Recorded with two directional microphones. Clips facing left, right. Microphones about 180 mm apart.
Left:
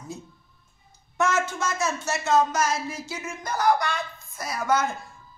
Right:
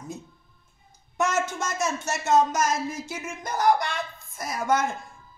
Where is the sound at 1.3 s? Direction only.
45° right (ahead or behind).